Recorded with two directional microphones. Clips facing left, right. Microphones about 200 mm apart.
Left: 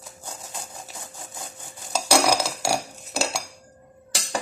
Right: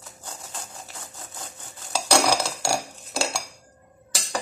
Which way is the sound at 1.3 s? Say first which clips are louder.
Left 2 dB; 15° left (ahead or behind).